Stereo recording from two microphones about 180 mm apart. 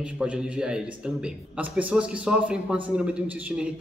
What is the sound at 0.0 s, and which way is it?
A man's voice, 5° right (ahead or behind).